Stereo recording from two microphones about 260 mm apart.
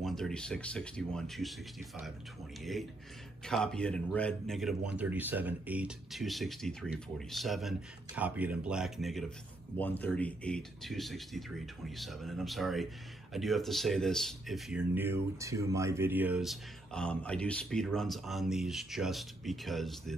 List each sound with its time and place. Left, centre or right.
0.0 s speech: centre